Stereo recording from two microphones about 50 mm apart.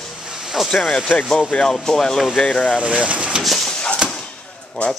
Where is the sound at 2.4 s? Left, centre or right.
Left.